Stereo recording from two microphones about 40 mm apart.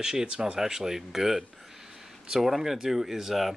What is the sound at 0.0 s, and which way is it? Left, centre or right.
Speech, centre.